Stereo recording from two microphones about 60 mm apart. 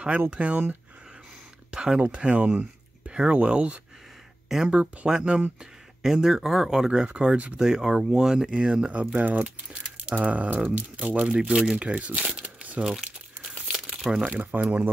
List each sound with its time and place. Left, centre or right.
0.3 s speech: right
1.7 s speech: centre
7.1 s speech: centre
12.3 s crumpling: right; by 14.2 s centre
14.2 s speech: right